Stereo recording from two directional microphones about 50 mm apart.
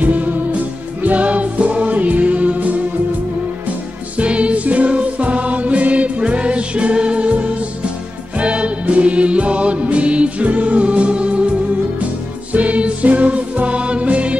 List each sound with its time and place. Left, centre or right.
0.0 s music: right
4.2 s music: right
12.5 s music: right